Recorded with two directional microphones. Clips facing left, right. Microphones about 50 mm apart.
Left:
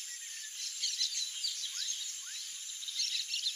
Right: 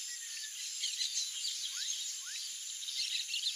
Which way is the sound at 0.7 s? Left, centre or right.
Centre.